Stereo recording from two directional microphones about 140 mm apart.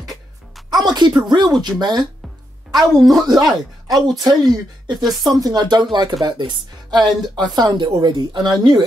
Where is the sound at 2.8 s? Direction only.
Centre (ahead or behind).